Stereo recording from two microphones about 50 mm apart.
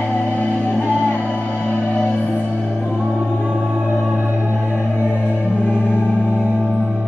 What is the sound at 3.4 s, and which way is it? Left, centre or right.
Music, right.